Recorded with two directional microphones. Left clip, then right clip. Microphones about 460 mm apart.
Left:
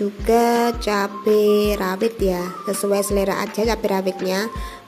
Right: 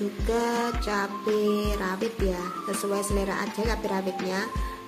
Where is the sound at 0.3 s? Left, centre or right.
Centre.